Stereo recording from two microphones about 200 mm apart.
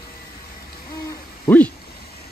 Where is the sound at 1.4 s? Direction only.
10° left (ahead or behind).